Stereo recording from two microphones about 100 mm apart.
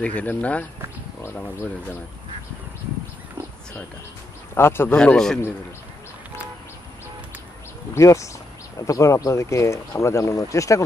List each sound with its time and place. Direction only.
0.0 s speech: 15° left (ahead or behind)
4.6 s speech: 25° left (ahead or behind)
4.9 s speech: 10° left (ahead or behind)
7.9 s speech: 30° left (ahead or behind)